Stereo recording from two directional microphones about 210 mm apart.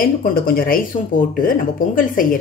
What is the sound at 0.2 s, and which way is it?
Speech, 45° left (ahead or behind).